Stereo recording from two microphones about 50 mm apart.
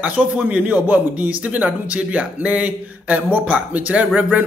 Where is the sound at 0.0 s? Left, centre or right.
Right.